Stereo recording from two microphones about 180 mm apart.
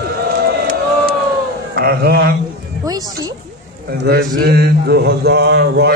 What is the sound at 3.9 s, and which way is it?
A man's voice, 60° right (ahead or behind).